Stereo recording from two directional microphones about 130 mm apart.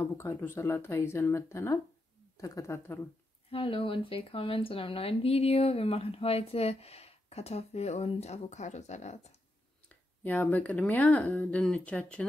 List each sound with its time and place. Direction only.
0.0 s speech: 20° left (ahead or behind)
3.5 s a woman's voice: 45° left (ahead or behind); by 9.2 s 60° left (ahead or behind)
9.8 s speech: 10° left (ahead or behind)